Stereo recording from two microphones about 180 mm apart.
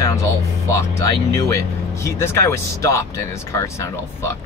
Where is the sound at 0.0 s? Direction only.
15° left (ahead or behind).